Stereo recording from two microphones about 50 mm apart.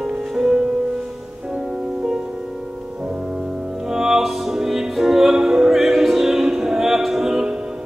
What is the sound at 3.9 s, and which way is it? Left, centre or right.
Music, centre.